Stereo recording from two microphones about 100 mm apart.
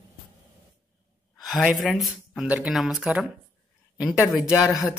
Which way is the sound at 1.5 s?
5° right (ahead or behind).